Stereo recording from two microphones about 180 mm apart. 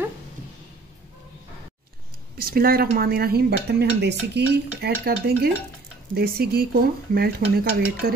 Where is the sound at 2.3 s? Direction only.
55° right (ahead or behind).